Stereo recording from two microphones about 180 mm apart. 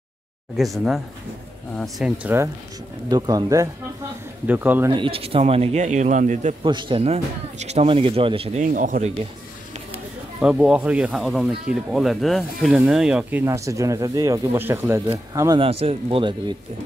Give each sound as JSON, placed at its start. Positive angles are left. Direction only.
{"t": 0.6, "sound": "speech", "side_deg": 0}
{"t": 3.1, "sound": "speech", "side_deg": -20}
{"t": 4.9, "sound": "speech", "side_deg": -30}
{"t": 6.6, "sound": "speech", "side_deg": -25}
{"t": 8.6, "sound": "speech", "side_deg": -50}
{"t": 10.4, "sound": "speech", "side_deg": -5}
{"t": 15.6, "sound": "speech", "side_deg": -35}